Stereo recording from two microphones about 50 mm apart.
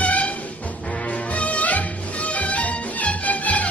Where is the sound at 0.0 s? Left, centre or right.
Left.